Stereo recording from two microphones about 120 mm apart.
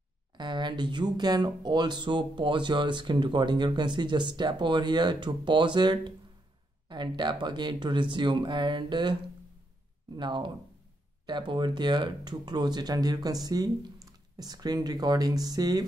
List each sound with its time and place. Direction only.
0.4 s speech: 40° right (ahead or behind)
10.1 s speech: 40° right (ahead or behind)